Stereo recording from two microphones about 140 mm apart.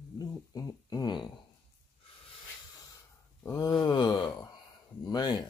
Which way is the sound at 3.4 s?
20° left (ahead or behind).